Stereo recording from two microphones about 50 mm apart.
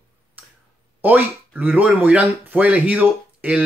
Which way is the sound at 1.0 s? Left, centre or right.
Right.